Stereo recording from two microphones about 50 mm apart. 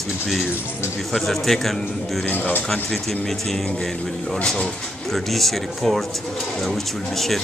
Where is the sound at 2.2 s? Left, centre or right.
Left.